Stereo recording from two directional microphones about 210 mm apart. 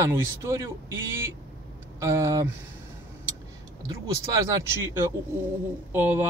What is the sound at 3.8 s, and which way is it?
Speech, 15° right (ahead or behind).